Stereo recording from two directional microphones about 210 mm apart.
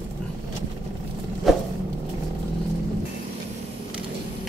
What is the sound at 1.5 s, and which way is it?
Vehicle, centre (ahead or behind).